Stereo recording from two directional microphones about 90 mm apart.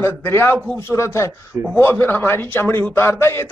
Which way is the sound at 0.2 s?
30° left (ahead or behind).